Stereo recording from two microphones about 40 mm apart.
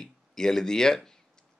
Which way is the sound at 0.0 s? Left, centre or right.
Centre.